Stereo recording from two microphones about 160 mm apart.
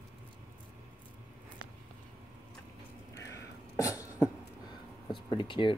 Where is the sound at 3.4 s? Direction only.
20° left (ahead or behind).